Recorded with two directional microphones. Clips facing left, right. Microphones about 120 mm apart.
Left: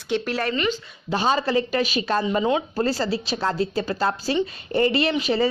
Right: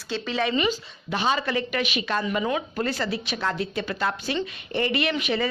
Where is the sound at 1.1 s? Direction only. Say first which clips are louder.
Left 3 dB; 35° left (ahead or behind).